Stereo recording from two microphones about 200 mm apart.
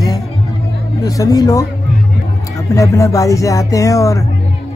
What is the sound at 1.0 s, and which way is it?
Music, 15° left (ahead or behind).